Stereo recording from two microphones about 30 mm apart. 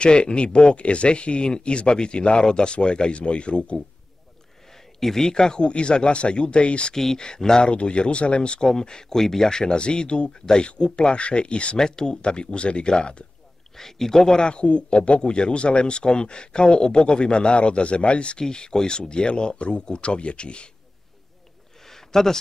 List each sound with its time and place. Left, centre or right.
0.0 s speech: left
5.0 s speech: centre
5.3 s speech: left
7.2 s speech: left
7.7 s speech: left
9.1 s speech: centre
9.5 s speech: left
11.8 s speech: left
12.2 s speech: left
13.7 s speech: centre
14.3 s speech: left
14.6 s speech: left
18.4 s speech: left
21.8 s a sound: centre